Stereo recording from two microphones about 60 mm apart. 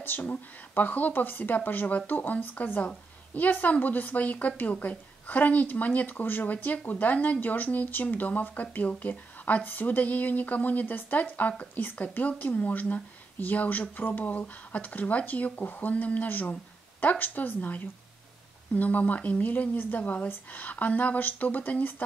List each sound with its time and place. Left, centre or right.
0.0 s a woman's voice: left